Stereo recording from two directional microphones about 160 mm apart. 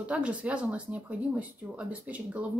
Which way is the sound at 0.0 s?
10° right (ahead or behind).